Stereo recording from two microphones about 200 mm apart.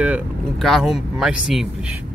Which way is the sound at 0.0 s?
5° right (ahead or behind).